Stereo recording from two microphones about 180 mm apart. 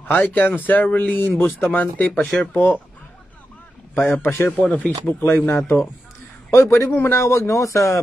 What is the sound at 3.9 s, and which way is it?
A man's voice, 10° left (ahead or behind).